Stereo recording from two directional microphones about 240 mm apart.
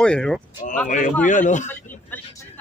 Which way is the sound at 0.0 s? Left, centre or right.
Centre.